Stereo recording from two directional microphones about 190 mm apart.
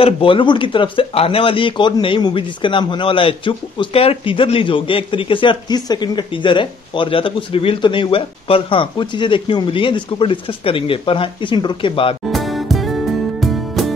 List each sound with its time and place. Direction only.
0.0 s speech: 25° left (ahead or behind)
12.3 s music: centre (ahead or behind)